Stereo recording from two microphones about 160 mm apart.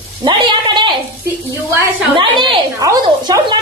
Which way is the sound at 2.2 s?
30° right (ahead or behind).